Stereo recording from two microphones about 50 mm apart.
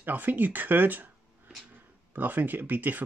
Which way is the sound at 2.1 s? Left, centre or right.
Right.